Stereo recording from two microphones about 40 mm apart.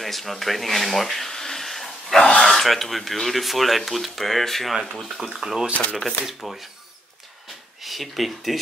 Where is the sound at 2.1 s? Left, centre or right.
Centre.